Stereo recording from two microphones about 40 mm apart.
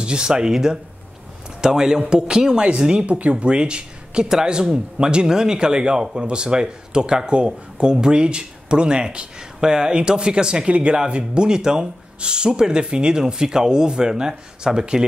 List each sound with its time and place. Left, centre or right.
0.0 s speech: right